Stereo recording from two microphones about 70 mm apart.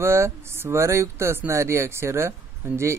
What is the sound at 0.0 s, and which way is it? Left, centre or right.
Speech, right.